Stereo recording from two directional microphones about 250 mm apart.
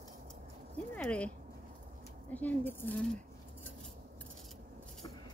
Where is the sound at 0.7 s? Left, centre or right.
Centre.